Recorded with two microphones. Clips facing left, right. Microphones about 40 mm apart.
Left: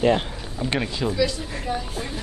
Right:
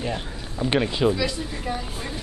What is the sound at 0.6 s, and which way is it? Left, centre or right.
Speech, centre.